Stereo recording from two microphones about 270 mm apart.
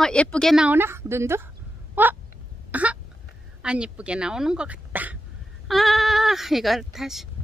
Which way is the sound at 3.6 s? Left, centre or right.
Centre.